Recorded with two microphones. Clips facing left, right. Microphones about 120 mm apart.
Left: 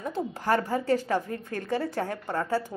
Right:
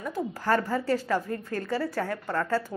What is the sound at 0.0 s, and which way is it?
A woman's voice, 25° left (ahead or behind).